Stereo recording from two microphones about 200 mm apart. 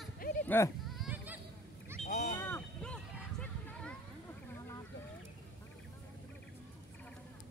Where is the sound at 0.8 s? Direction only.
Centre (ahead or behind).